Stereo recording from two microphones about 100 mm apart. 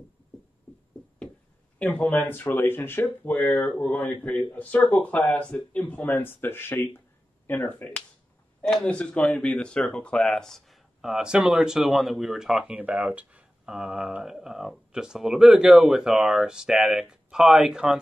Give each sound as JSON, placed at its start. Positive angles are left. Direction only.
{"t": 1.8, "sound": "speech", "side_deg": 15}